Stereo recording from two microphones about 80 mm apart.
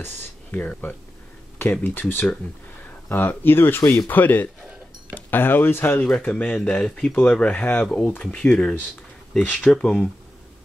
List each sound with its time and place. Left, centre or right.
0.5 s speech: centre
6.0 s speech: centre